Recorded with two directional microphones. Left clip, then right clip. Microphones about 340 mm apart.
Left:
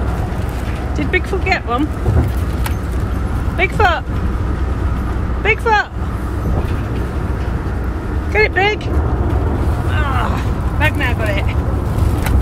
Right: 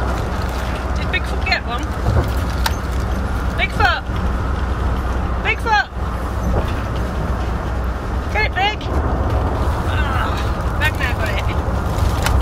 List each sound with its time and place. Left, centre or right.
0.9 s speech: centre
3.5 s speech: centre
5.4 s speech: centre
8.4 s speech: left
9.9 s vehicle: left
10.8 s speech: left